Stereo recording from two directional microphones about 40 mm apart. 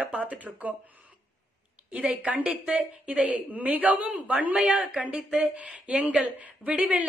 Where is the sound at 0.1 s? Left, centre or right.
Right.